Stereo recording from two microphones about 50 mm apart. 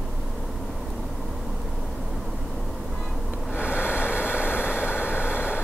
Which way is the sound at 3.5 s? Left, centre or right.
Left.